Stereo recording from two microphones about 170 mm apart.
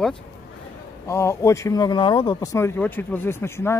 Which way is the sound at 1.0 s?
15° left (ahead or behind).